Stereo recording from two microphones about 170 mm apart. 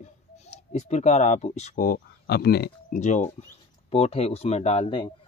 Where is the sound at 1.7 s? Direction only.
65° left (ahead or behind).